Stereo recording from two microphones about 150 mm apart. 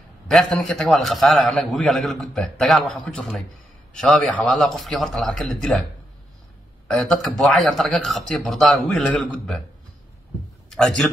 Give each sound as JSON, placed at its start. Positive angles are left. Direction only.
{"t": 0.3, "sound": "a man's voice", "side_deg": 0}
{"t": 6.9, "sound": "a man's voice", "side_deg": 0}
{"t": 10.7, "sound": "a man's voice", "side_deg": 5}